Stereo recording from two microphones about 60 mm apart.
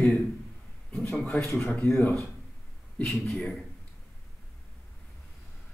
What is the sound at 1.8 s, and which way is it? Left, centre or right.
Speech, left.